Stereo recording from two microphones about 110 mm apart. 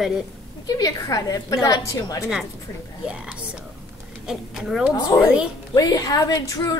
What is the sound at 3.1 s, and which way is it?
A woman's voice, 10° right (ahead or behind).